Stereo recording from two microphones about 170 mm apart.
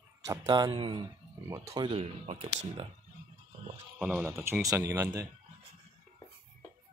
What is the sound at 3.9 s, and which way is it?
Speech, 5° right (ahead or behind).